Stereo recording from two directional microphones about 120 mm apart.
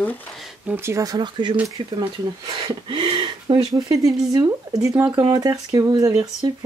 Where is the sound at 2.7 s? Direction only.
40° right (ahead or behind).